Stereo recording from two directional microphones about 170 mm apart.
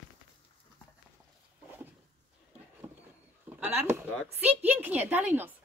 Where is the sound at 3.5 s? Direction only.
10° right (ahead or behind).